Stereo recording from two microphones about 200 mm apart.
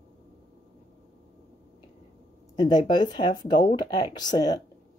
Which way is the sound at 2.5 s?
20° left (ahead or behind).